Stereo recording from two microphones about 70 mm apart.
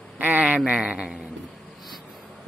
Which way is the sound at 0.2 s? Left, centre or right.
Right.